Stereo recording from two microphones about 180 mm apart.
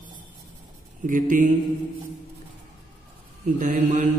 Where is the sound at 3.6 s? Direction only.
45° right (ahead or behind).